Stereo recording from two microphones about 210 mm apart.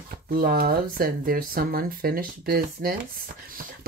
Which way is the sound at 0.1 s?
45° right (ahead or behind).